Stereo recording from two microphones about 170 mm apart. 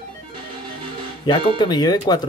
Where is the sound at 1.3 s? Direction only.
25° left (ahead or behind).